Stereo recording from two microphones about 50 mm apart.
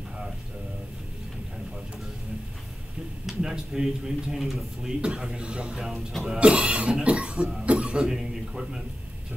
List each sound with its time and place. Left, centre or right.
3.3 s a man's voice: centre
5.0 s speech: centre
5.9 s speech: centre
6.3 s speech: right
8.1 s speech: centre